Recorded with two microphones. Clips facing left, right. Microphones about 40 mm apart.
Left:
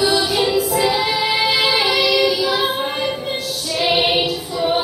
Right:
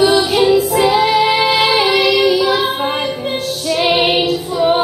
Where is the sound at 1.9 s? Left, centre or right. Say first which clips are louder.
Right 4 dB; right.